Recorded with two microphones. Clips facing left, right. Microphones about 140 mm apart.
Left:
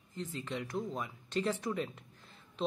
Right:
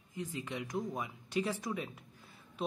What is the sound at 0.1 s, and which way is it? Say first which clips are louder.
A woman's voice: left 1 dB; 15° right (ahead or behind).